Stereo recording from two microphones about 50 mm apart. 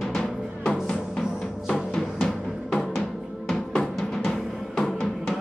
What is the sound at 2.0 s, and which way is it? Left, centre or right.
Music, centre.